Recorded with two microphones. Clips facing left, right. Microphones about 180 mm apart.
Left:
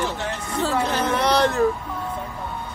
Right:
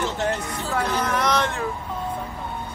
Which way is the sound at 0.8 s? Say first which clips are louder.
Right 2 dB; 30° left (ahead or behind).